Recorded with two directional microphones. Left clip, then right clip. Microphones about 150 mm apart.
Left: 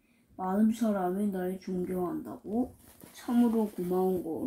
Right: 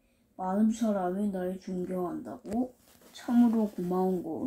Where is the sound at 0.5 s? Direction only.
5° left (ahead or behind).